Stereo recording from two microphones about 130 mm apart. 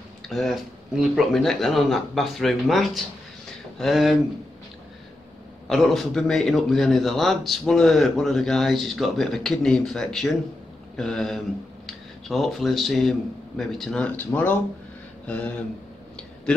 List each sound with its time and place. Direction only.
0.3 s a man's voice: centre (ahead or behind)
5.7 s a man's voice: centre (ahead or behind)